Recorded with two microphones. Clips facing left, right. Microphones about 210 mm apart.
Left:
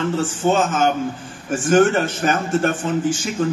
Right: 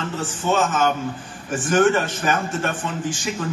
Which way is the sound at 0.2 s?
45° left (ahead or behind).